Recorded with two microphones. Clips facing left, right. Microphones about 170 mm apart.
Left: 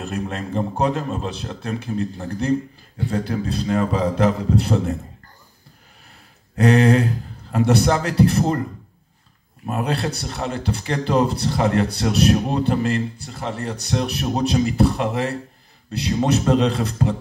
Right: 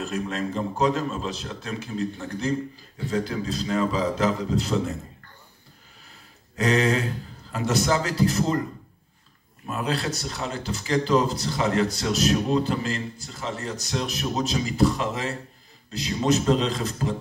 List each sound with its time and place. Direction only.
0.0 s a man's voice: 55° left (ahead or behind)
3.3 s a man's voice: 60° left (ahead or behind)
6.5 s a man's voice: 55° left (ahead or behind)
9.7 s a man's voice: 55° left (ahead or behind)